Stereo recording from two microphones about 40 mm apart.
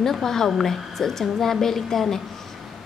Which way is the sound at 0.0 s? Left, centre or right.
Centre.